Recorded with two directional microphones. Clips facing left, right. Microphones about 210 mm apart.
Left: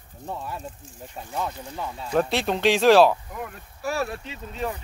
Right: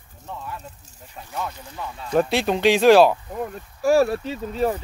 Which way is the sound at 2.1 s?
Centre (ahead or behind).